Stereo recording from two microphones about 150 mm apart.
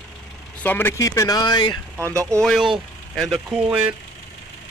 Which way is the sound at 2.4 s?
Centre (ahead or behind).